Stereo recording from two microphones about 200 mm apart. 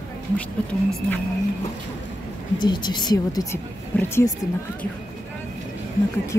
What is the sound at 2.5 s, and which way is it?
A woman's voice, 20° left (ahead or behind).